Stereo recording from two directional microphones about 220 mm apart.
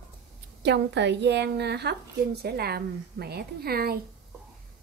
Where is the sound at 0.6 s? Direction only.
50° right (ahead or behind).